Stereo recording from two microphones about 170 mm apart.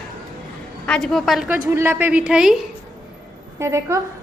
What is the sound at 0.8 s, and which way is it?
Speech, 5° left (ahead or behind).